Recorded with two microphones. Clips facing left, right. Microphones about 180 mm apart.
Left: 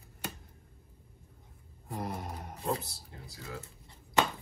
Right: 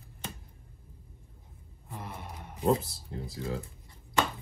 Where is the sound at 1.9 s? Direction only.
40° left (ahead or behind).